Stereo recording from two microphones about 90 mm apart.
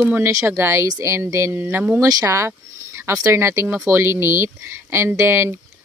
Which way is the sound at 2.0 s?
40° right (ahead or behind).